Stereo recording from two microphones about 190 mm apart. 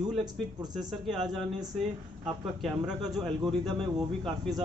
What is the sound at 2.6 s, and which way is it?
Speech, centre (ahead or behind).